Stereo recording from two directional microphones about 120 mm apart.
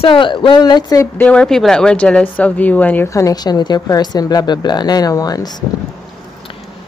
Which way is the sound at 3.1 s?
30° left (ahead or behind).